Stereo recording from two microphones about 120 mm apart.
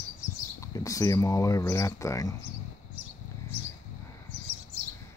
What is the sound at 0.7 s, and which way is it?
Speech, 25° left (ahead or behind).